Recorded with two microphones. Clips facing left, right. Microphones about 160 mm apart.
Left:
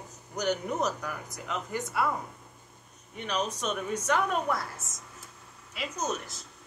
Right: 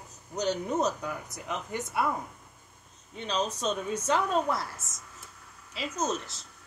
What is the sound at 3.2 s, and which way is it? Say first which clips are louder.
Speech: right 1 dB; 25° right (ahead or behind).